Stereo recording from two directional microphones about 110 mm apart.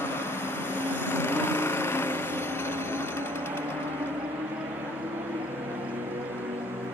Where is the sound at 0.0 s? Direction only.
20° left (ahead or behind).